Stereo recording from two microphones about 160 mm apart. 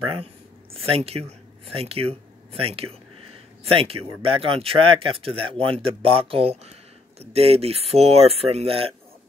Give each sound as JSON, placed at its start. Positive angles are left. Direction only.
{"t": 0.8, "sound": "speech", "side_deg": -40}